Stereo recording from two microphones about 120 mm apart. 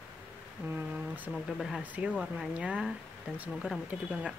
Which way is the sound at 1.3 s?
Centre (ahead or behind).